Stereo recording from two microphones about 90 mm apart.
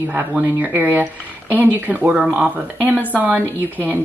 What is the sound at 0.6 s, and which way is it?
Speech, 25° right (ahead or behind).